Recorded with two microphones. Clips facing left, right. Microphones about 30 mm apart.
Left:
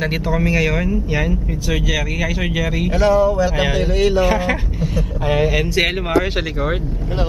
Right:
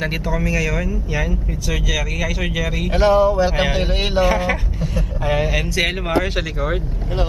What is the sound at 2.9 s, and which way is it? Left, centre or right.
Speech, right.